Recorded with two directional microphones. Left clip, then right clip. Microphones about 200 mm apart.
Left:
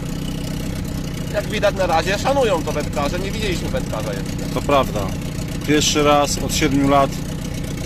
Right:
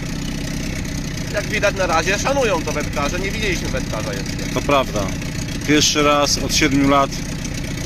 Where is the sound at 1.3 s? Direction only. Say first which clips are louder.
Even; 25° left (ahead or behind).